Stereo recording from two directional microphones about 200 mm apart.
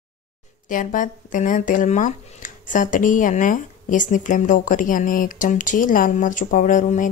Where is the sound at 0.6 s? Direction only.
40° left (ahead or behind).